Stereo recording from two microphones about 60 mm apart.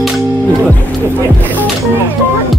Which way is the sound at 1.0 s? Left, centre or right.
Right.